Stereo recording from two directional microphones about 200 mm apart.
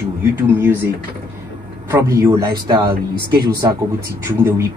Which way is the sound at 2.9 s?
50° right (ahead or behind).